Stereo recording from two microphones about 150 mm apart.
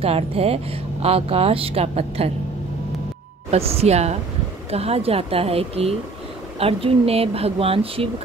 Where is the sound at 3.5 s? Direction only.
40° right (ahead or behind).